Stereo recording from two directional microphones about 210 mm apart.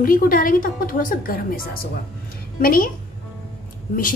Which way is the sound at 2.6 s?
45° left (ahead or behind).